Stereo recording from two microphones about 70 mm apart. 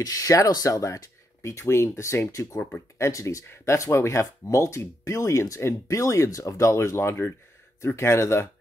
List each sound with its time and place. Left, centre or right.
0.0 s speech: left
3.4 s speech: left